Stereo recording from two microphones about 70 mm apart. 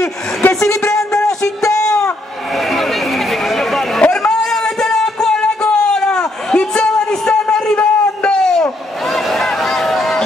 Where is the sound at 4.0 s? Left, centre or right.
Centre.